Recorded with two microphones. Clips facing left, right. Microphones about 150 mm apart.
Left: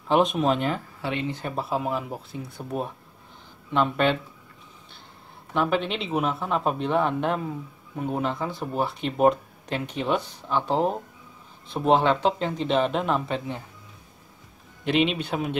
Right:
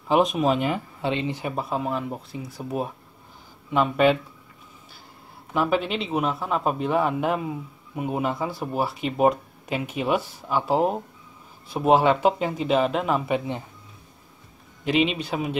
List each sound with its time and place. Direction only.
0.1 s speech: centre (ahead or behind)
1.0 s speech: 20° right (ahead or behind)
1.4 s speech: 5° right (ahead or behind)
5.5 s speech: 5° right (ahead or behind)
14.9 s speech: centre (ahead or behind)